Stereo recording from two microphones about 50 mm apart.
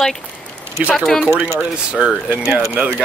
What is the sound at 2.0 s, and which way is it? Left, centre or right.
Speech, centre.